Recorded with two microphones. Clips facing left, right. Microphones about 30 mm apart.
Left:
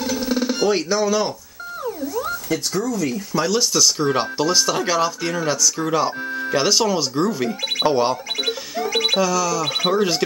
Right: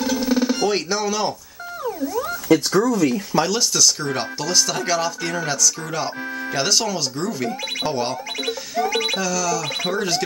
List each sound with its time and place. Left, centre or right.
0.2 s music: centre
0.7 s speech: centre
2.8 s speech: right
3.4 s speech: centre
4.0 s speech: centre
8.5 s music: centre
9.1 s speech: centre